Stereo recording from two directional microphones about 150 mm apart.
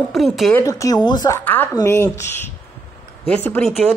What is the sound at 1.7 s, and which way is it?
Speech, 15° left (ahead or behind).